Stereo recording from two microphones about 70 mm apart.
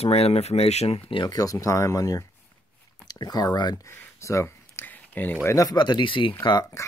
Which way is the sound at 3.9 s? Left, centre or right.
Left.